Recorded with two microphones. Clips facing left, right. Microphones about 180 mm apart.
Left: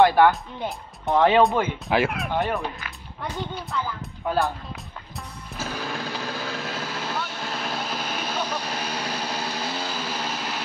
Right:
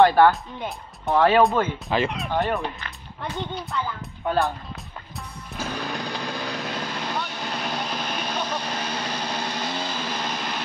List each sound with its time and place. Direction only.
0.0 s speech: 10° left (ahead or behind)
0.3 s speech: centre (ahead or behind)
1.1 s speech: 20° left (ahead or behind); by 2.9 s centre (ahead or behind)
5.6 s vehicle: 5° left (ahead or behind)